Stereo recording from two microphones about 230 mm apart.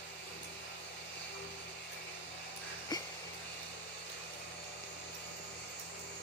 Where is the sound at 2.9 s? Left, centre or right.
Centre.